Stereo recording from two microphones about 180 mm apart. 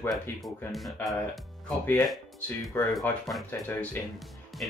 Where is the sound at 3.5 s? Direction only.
10° left (ahead or behind).